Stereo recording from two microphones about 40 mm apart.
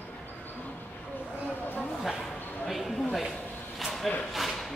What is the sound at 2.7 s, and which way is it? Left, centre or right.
Speech, centre.